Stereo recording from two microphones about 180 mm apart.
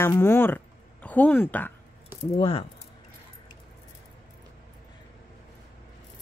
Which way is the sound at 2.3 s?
30° left (ahead or behind).